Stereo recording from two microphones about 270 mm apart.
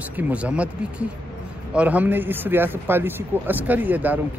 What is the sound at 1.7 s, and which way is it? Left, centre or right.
Speech, centre.